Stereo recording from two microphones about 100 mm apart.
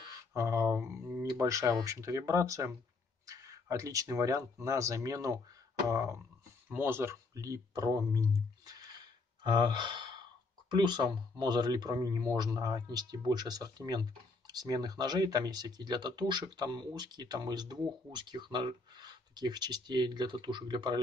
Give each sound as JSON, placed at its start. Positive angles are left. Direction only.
{"t": 0.3, "sound": "speech", "side_deg": -30}
{"t": 7.3, "sound": "a sound", "side_deg": -35}
{"t": 10.7, "sound": "speech", "side_deg": -50}